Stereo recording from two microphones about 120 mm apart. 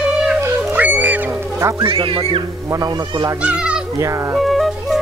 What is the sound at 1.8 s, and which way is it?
Speech, 50° right (ahead or behind).